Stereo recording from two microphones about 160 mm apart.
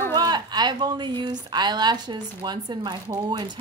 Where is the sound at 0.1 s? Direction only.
25° right (ahead or behind).